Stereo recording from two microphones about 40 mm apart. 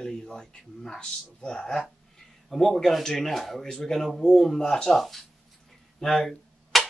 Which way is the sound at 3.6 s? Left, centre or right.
Centre.